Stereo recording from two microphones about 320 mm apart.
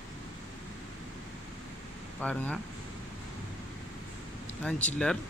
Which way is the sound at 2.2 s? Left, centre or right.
Centre.